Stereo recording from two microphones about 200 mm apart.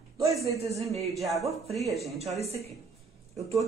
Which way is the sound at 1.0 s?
Centre (ahead or behind).